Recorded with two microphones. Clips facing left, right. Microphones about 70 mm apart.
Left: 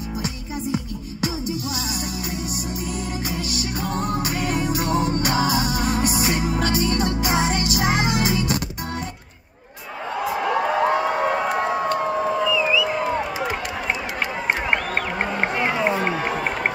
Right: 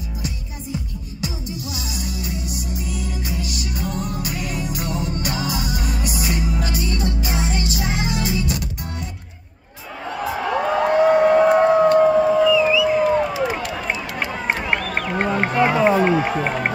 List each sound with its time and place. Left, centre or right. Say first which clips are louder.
2.0 s music: left 1 dB; left
10.2 s a sound: even; centre
14.5 s crowd: even; centre
16.1 s run: right 4 dB; centre